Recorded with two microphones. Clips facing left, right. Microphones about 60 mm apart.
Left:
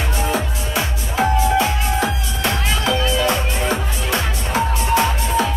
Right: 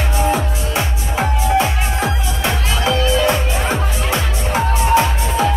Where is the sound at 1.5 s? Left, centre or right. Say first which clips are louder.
Right 1 dB; right.